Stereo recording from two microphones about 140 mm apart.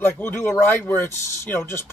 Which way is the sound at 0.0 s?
15° left (ahead or behind).